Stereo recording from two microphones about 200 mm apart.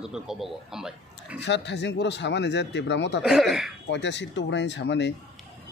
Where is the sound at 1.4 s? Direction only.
60° left (ahead or behind).